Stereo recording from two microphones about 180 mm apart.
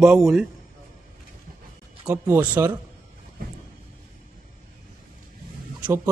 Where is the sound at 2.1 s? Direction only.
10° right (ahead or behind).